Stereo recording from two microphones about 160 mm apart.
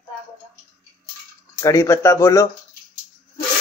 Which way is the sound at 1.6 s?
20° left (ahead or behind).